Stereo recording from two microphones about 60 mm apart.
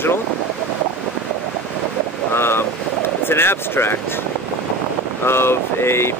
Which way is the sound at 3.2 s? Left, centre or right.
Left.